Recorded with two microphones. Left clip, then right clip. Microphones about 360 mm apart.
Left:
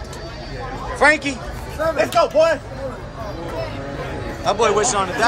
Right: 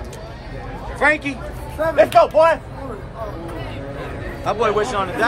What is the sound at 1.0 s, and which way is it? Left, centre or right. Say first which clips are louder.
Speech: left 2 dB; centre.